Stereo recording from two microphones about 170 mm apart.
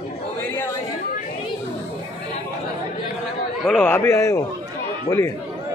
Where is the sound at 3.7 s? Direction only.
10° left (ahead or behind).